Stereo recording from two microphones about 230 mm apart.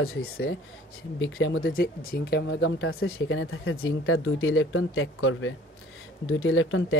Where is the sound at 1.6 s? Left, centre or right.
Left.